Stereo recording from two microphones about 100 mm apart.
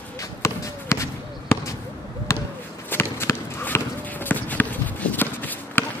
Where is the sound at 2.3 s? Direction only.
25° left (ahead or behind).